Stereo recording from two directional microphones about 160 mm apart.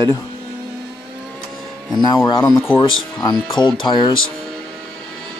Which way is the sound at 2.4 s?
5° left (ahead or behind).